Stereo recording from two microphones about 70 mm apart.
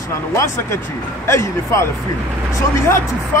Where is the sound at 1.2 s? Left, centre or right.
Left.